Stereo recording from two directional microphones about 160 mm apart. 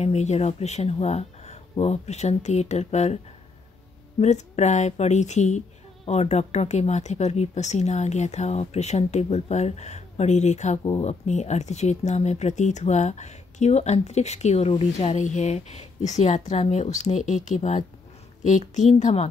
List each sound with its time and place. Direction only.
0.0 s speech: 45° left (ahead or behind)
4.2 s speech: 45° left (ahead or behind)
10.8 s speech: 30° left (ahead or behind)
11.1 s speech: 45° left (ahead or behind)